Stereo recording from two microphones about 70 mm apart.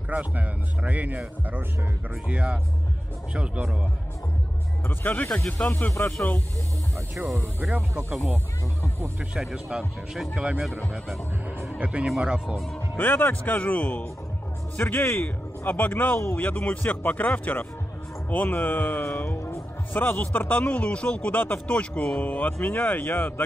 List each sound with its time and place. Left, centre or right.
0.1 s speech: right
4.8 s speech: left
5.6 s speech: centre
6.0 s speech: left
9.4 s speech: centre
11.8 s speech: centre
12.9 s speech: left
16.3 s a man's voice: left
20.0 s speech: left